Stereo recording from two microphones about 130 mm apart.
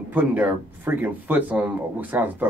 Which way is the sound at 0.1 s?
15° right (ahead or behind).